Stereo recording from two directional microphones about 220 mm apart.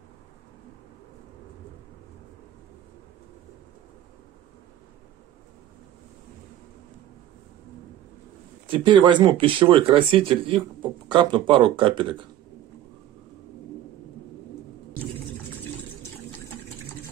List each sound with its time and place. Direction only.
8.6 s speech: 20° right (ahead or behind)